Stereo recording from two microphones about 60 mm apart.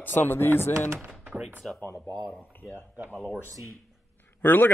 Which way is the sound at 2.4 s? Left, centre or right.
Left.